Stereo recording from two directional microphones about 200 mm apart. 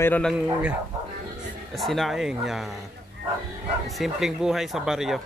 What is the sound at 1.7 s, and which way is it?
Speech, centre (ahead or behind).